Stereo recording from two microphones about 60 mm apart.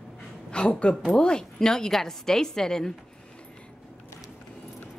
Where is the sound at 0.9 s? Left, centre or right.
Centre.